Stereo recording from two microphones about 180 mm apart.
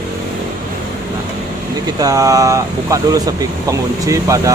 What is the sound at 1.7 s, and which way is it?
Speech, 20° right (ahead or behind).